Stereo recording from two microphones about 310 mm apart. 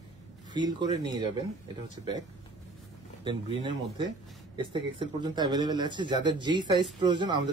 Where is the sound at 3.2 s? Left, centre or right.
Centre.